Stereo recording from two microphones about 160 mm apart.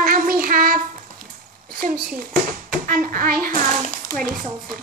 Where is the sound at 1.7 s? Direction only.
65° right (ahead or behind).